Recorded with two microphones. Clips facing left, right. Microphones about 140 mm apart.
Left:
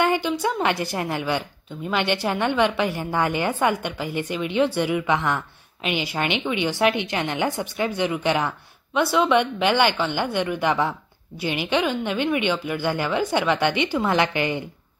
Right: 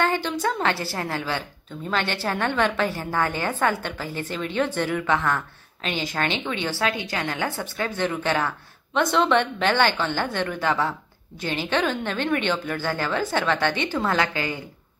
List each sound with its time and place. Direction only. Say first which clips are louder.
0.0 s a woman's voice: left 2 dB; 10° left (ahead or behind)